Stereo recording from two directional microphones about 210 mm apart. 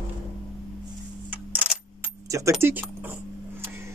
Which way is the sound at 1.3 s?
5° right (ahead or behind).